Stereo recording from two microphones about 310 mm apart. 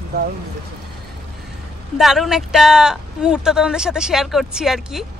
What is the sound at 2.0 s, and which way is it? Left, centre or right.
Speech, centre.